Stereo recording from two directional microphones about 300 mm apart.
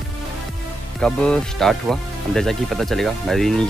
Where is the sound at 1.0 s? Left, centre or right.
Centre.